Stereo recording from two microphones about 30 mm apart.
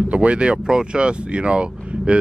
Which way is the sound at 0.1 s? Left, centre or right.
Right.